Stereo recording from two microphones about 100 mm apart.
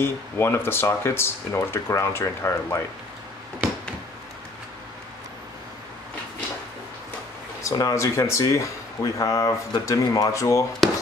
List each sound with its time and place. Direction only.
0.0 s speech: 25° left (ahead or behind)
7.6 s speech: 35° left (ahead or behind)
10.8 s a sound: centre (ahead or behind)